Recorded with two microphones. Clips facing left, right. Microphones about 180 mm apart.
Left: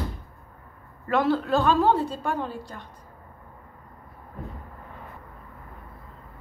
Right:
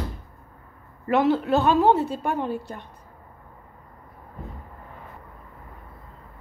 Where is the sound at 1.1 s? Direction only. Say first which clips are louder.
Right 2 dB; 20° right (ahead or behind).